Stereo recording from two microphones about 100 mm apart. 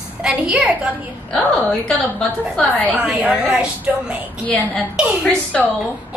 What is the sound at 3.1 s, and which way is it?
A woman's voice, 5° right (ahead or behind).